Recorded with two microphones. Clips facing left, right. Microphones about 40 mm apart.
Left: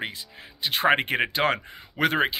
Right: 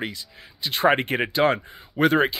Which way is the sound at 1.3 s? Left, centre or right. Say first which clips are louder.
Right 4 dB; left.